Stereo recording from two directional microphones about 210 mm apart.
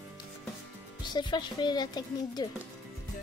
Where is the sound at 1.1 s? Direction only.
20° left (ahead or behind).